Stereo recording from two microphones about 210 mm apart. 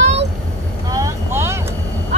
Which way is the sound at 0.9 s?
15° right (ahead or behind).